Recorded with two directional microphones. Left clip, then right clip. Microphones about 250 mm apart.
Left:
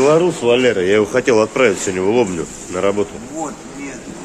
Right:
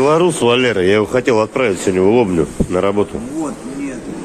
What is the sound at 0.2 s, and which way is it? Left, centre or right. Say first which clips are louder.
Speech: right 1 dB; right.